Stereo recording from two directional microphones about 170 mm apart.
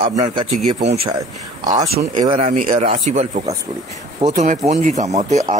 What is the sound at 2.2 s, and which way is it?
Speech, 35° right (ahead or behind).